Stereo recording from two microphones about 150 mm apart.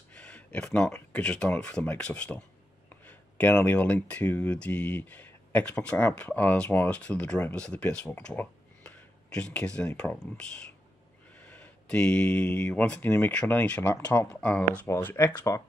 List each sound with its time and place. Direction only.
0.1 s a sound: 5° left (ahead or behind)
0.7 s speech: 10° left (ahead or behind)
11.4 s speech: 10° left (ahead or behind)